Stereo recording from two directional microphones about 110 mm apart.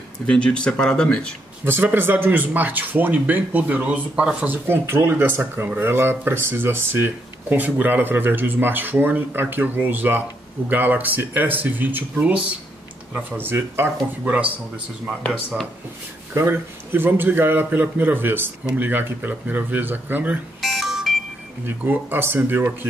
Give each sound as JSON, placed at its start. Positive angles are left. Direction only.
{"t": 0.3, "sound": "speech", "side_deg": 10}
{"t": 1.6, "sound": "speech", "side_deg": -20}
{"t": 13.4, "sound": "a man's voice", "side_deg": -20}
{"t": 16.3, "sound": "a man's voice", "side_deg": -20}
{"t": 20.6, "sound": "music", "side_deg": 0}
{"t": 21.6, "sound": "a man's voice", "side_deg": -20}